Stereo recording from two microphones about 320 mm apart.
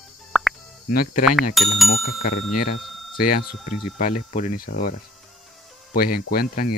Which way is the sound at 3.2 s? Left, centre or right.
Left.